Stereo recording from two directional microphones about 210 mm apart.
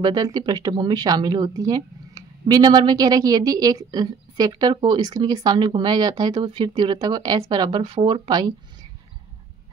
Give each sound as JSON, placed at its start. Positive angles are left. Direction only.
{"t": 0.0, "sound": "speech", "side_deg": -20}